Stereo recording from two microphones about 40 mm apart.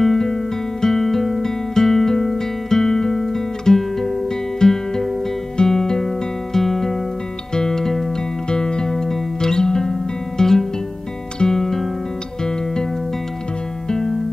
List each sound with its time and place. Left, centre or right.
0.0 s music: centre
8.5 s music: left
13.8 s music: centre